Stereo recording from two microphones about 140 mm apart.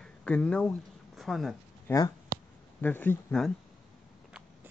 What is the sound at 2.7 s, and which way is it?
Speech, 10° left (ahead or behind).